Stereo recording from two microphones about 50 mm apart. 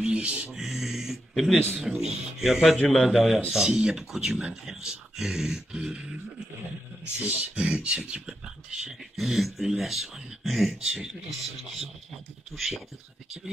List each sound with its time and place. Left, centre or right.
0.1 s music: right
0.6 s speech: centre
9.1 s speech: centre
12.5 s speech: centre